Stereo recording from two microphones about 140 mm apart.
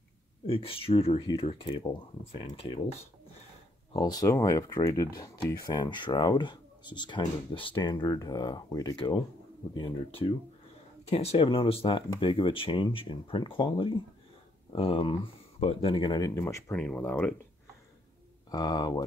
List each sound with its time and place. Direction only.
0.5 s speech: 40° left (ahead or behind)
3.9 s speech: 25° left (ahead or behind)
11.1 s speech: 50° left (ahead or behind); by 16.7 s 20° left (ahead or behind)
16.7 s speech: 10° left (ahead or behind)
18.5 s speech: 25° left (ahead or behind)